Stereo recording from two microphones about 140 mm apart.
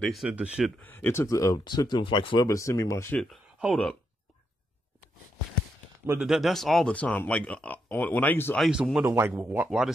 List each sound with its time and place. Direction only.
0.0 s speech: centre (ahead or behind)
0.7 s speech: 15° left (ahead or behind)
3.5 s speech: 5° right (ahead or behind)
6.2 s speech: centre (ahead or behind); by 8.5 s 15° left (ahead or behind)
8.5 s speech: centre (ahead or behind)
9.0 s speech: 15° right (ahead or behind)
9.7 s speech: 5° right (ahead or behind)